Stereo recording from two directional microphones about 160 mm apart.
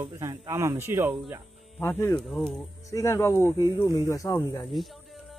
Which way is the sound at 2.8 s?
20° left (ahead or behind).